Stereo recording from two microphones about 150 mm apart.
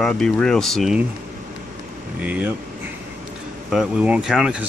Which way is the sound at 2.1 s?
10° right (ahead or behind).